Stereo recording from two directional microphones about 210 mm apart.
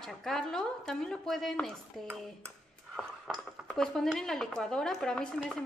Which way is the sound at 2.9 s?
Centre (ahead or behind).